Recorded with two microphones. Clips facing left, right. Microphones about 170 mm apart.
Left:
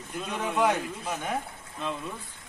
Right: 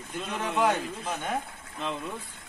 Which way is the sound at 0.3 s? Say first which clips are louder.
Even; centre (ahead or behind).